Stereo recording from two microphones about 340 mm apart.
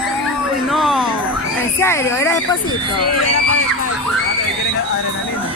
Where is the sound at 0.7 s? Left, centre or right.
Centre.